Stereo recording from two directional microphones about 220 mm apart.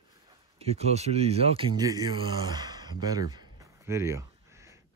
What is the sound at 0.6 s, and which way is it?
Speech, 30° right (ahead or behind).